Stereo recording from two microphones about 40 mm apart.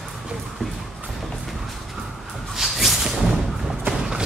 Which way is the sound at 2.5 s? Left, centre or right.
Centre.